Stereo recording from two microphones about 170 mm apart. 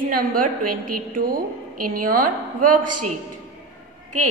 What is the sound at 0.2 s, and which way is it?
A woman's voice, 55° right (ahead or behind).